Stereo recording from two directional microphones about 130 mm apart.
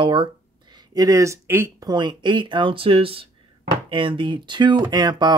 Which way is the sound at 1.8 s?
35° right (ahead or behind).